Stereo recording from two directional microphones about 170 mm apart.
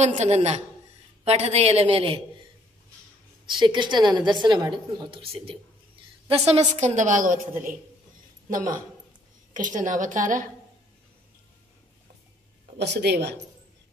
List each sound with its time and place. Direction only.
0.0 s a woman's voice: 40° right (ahead or behind)
3.4 s a woman's voice: 25° right (ahead or behind); by 7.3 s 50° right (ahead or behind)
8.5 s a woman's voice: 55° right (ahead or behind)
12.7 s speech: 85° right